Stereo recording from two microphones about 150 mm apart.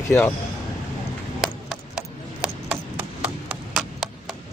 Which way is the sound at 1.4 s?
5° right (ahead or behind).